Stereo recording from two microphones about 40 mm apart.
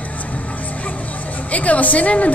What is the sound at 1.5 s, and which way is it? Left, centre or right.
Speech, left.